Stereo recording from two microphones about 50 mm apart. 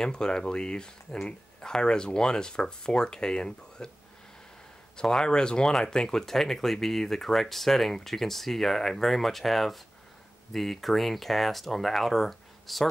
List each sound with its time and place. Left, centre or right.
0.0 s speech: centre
4.9 s speech: centre